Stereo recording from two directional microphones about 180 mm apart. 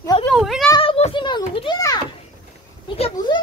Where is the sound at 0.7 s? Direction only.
30° left (ahead or behind).